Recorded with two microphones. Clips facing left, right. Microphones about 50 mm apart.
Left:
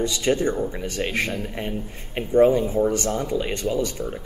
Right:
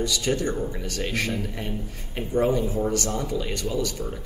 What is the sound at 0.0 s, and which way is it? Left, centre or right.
A man's voice, left.